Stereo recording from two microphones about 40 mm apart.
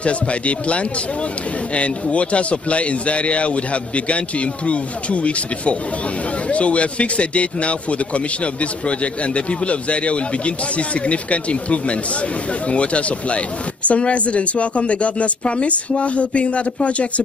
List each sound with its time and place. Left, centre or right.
0.0 s a man's voice: left